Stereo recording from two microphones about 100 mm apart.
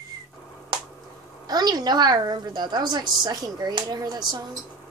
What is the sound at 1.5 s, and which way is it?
A woman's voice, 45° right (ahead or behind).